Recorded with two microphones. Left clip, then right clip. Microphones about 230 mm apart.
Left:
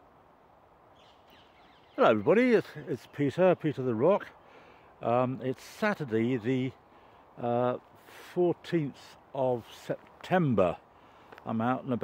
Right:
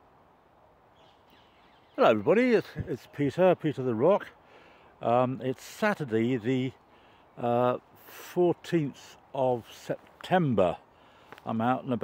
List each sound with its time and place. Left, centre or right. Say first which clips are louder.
2.0 s speech: right 1 dB; centre